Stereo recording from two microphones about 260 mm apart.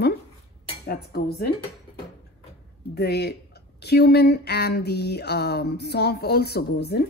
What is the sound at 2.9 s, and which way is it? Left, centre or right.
Speech, left.